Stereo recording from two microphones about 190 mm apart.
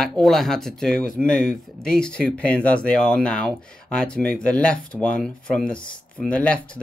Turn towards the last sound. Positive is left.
turn(degrees=5)  # may be behind; listen again after turning